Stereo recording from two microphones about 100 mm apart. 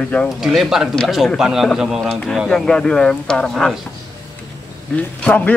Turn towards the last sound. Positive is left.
turn(degrees=15)  # may be behind; listen again after turning